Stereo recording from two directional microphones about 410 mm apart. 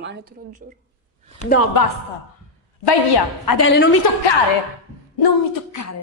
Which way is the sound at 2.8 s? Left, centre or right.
Left.